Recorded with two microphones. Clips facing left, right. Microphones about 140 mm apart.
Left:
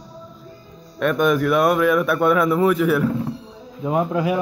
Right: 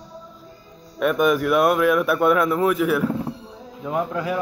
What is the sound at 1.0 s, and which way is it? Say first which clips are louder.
Speech: left 1 dB; 5° right (ahead or behind).